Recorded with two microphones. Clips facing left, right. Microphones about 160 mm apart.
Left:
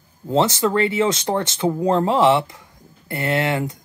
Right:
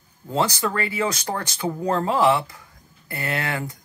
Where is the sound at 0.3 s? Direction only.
25° left (ahead or behind).